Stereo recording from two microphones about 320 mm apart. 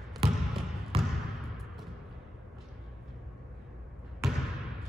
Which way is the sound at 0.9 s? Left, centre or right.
Centre.